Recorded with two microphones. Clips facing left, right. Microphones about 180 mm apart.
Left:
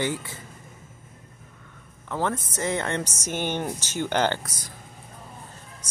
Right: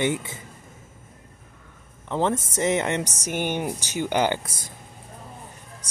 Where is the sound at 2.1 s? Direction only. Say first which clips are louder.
Right 4 dB; 20° right (ahead or behind).